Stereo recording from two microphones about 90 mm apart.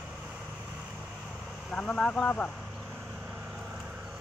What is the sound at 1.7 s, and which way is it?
Speech, 10° left (ahead or behind).